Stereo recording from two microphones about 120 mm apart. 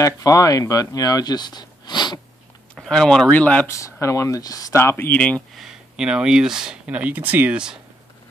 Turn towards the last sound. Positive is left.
turn(degrees=-5)  # may be behind; listen again after turning